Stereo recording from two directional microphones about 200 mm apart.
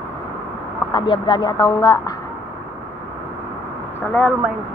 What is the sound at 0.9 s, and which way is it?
Speech, 20° left (ahead or behind).